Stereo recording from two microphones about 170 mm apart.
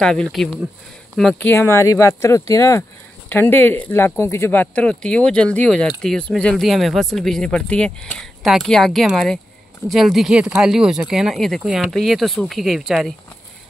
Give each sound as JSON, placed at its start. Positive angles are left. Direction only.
{"t": 0.0, "sound": "speech", "side_deg": 5}
{"t": 1.5, "sound": "speech", "side_deg": 15}